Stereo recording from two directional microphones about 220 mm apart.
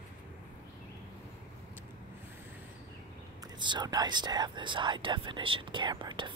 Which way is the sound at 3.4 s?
20° right (ahead or behind).